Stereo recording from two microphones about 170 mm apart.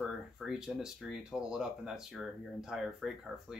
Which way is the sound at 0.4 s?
5° right (ahead or behind).